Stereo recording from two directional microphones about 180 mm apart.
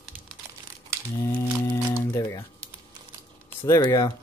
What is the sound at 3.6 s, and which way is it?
Speech, 20° left (ahead or behind).